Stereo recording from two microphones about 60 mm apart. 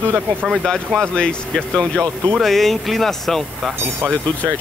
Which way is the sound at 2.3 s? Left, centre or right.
Centre.